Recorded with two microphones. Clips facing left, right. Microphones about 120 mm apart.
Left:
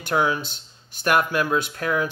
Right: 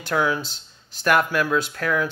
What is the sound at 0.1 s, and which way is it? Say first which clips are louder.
A man's voice: even; 20° left (ahead or behind).